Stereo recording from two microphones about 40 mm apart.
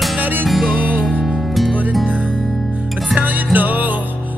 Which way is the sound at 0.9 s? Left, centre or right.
Left.